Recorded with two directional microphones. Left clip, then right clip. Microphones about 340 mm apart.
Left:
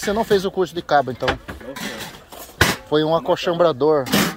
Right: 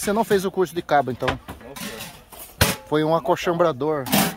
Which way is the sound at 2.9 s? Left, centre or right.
Centre.